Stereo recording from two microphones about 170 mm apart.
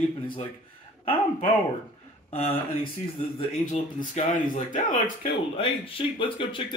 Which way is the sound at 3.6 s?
45° left (ahead or behind).